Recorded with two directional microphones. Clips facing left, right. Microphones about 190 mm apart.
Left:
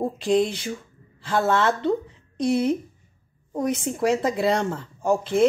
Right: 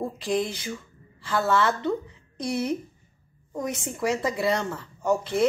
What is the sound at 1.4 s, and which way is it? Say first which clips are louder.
Speech: left 2 dB; 30° left (ahead or behind).